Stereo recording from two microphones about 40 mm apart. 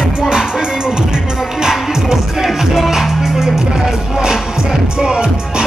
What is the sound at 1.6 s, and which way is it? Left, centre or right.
Music, centre.